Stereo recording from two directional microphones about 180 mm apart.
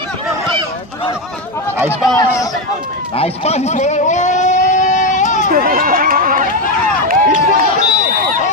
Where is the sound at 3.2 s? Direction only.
35° left (ahead or behind).